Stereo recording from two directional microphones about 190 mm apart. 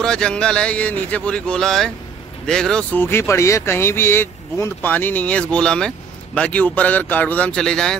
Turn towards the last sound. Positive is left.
turn(degrees=5)  # may be behind; listen again after turning